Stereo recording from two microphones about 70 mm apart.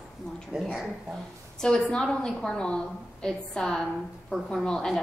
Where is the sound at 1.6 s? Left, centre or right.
Centre.